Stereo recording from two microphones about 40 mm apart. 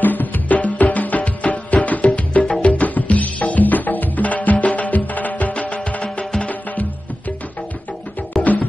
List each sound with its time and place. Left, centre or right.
0.0 s music: left
2.7 s music: left
6.7 s music: left
8.4 s music: left